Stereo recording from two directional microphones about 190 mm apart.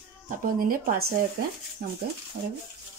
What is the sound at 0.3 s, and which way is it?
Speech, 45° right (ahead or behind).